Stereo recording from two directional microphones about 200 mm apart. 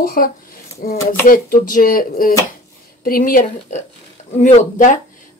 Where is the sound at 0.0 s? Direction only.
45° left (ahead or behind).